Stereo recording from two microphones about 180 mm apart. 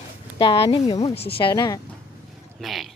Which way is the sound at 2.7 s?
Centre (ahead or behind).